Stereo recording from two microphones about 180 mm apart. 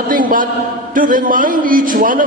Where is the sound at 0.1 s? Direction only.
50° right (ahead or behind).